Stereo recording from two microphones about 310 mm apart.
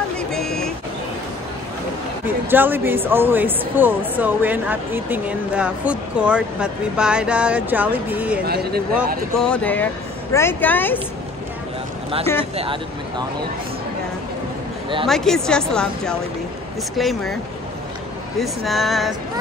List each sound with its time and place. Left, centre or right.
0.3 s a sound: centre
2.2 s speech: centre
8.5 s speech: right
9.4 s speech: centre
15.0 s speech: centre
18.4 s speech: centre